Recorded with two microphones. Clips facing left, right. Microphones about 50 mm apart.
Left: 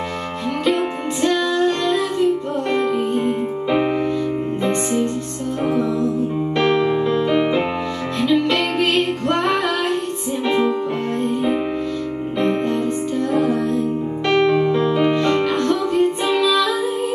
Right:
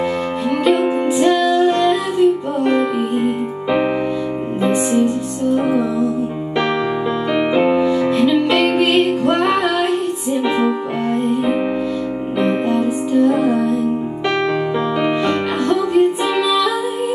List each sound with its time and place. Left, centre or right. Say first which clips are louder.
1.2 s music: right 3 dB; centre
7.3 s music: right 4 dB; centre
12.4 s music: right 2 dB; centre